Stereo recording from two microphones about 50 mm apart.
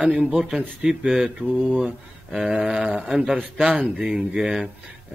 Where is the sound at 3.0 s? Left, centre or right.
Centre.